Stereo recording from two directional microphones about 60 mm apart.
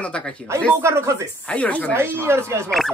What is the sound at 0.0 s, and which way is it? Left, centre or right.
Speech, left.